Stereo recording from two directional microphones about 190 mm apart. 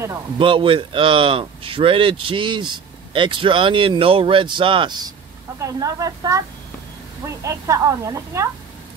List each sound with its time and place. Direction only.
0.4 s speech: 25° right (ahead or behind)